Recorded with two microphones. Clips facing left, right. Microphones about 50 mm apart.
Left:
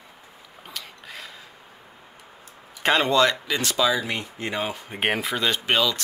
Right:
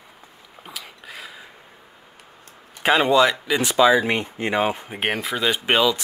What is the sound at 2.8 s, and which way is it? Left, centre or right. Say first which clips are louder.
Speech: right 3 dB; centre.